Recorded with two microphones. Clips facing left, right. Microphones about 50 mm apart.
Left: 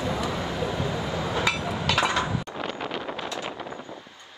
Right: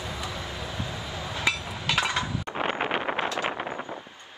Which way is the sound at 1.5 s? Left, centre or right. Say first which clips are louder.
Left 6 dB; left.